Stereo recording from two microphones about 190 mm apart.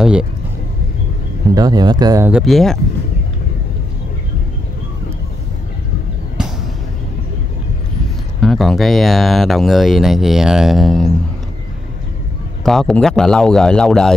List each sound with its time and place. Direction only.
0.0 s speech: 5° right (ahead or behind)
1.5 s speech: 20° right (ahead or behind)
2.3 s speech: centre (ahead or behind)
8.4 s speech: centre (ahead or behind)
12.6 s speech: centre (ahead or behind)